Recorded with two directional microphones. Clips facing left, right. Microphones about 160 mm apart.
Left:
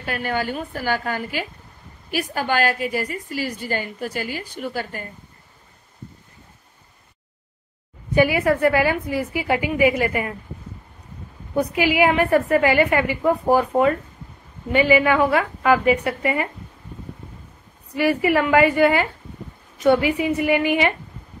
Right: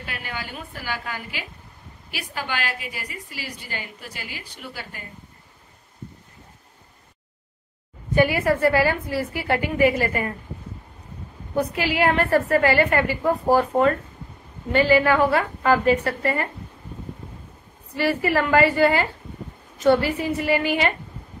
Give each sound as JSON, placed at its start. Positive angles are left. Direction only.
{"t": 0.0, "sound": "a woman's voice", "side_deg": 45}
{"t": 8.1, "sound": "a woman's voice", "side_deg": 10}
{"t": 11.5, "sound": "a woman's voice", "side_deg": 15}
{"t": 17.9, "sound": "a woman's voice", "side_deg": 15}